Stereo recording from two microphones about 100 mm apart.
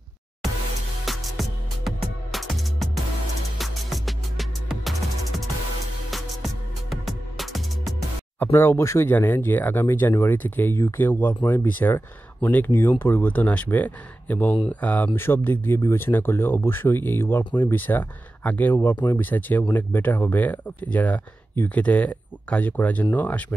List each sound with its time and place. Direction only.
1.0 s music: centre (ahead or behind)
6.0 s music: centre (ahead or behind)
8.4 s speech: 25° left (ahead or behind)